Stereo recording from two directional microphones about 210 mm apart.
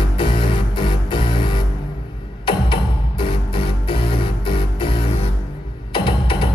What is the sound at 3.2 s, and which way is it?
Music, 25° left (ahead or behind).